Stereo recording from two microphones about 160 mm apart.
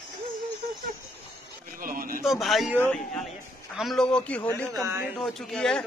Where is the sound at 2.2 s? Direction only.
Centre (ahead or behind).